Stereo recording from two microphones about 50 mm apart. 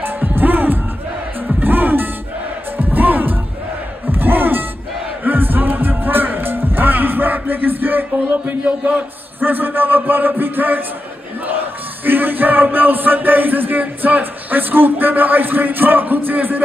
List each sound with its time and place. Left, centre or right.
0.0 s music: right
8.6 s a man's voice: right
9.4 s music: right
12.0 s music: right